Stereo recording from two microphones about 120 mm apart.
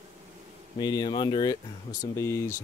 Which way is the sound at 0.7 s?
35° left (ahead or behind).